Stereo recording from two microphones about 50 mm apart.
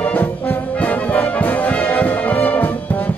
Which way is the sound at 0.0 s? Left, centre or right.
Left.